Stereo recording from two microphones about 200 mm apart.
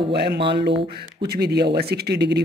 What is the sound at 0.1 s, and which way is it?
Speech, 55° right (ahead or behind).